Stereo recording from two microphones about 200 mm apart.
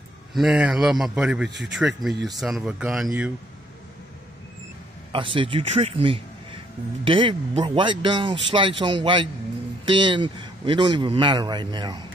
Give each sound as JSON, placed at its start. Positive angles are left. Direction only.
{"t": 0.3, "sound": "a man's voice", "side_deg": -5}
{"t": 5.1, "sound": "a man's voice", "side_deg": -25}